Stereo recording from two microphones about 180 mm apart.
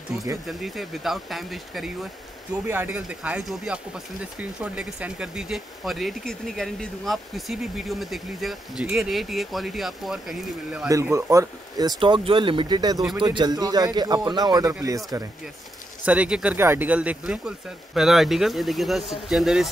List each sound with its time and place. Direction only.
0.5 s speech: centre (ahead or behind)
2.6 s speech: 10° right (ahead or behind)
10.9 s speech: 15° right (ahead or behind)
16.1 s speech: 5° right (ahead or behind)